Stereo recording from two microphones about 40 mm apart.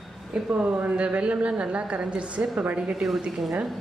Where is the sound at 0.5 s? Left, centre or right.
Right.